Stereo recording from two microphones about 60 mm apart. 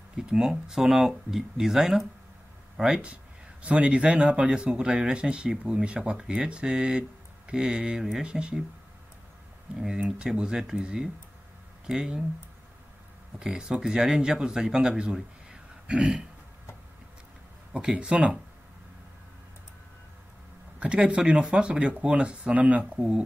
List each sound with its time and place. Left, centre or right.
0.1 s speech: centre
9.8 s speech: centre
13.4 s speech: centre
17.7 s speech: centre
20.8 s speech: centre